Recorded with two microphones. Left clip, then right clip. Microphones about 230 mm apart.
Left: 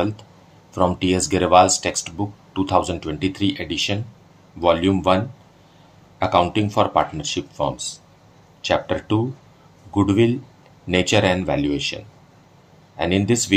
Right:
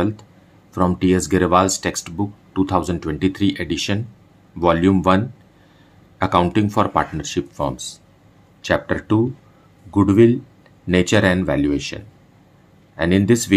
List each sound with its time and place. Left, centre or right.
0.7 s speech: right